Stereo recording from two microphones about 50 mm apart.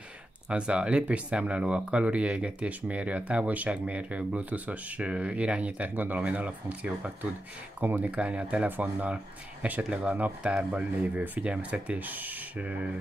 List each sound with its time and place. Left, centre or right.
0.5 s speech: right
8.6 s speech: right
12.0 s speech: right